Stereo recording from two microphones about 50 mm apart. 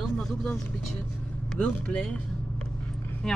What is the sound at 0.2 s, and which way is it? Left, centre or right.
Speech, centre.